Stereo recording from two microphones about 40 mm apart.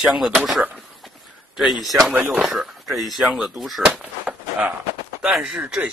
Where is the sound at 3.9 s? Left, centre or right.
Right.